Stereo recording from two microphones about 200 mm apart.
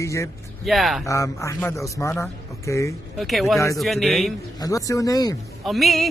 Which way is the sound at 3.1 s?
Centre (ahead or behind).